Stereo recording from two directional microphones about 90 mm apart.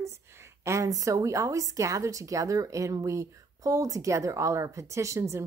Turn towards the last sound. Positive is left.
turn(degrees=-35)  # may be behind; listen again after turning